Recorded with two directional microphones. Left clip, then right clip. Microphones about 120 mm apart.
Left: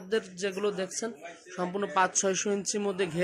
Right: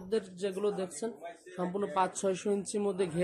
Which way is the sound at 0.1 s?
Centre (ahead or behind).